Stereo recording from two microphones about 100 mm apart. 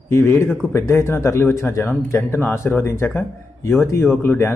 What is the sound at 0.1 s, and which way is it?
Speech, 25° left (ahead or behind).